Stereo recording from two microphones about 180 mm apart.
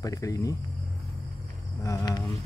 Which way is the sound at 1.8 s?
20° left (ahead or behind).